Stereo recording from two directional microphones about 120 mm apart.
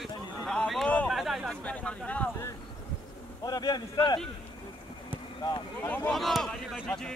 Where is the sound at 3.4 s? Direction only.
30° left (ahead or behind).